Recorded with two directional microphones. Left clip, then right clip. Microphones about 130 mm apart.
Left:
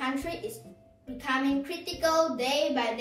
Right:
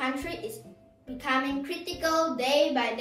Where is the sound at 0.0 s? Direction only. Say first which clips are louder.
Right 1 dB; 25° right (ahead or behind).